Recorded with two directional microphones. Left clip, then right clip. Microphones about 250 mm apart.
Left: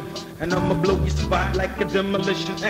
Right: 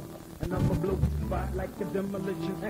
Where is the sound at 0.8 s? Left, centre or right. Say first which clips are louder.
Left 10 dB; right.